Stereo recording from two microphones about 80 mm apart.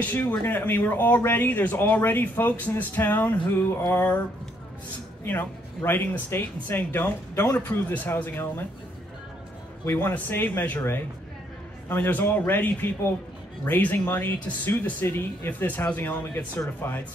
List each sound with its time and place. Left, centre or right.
0.0 s speech: left
5.2 s speech: left
9.8 s speech: left